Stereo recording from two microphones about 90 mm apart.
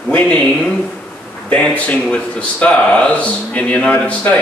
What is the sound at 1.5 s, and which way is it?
Speech, 15° left (ahead or behind).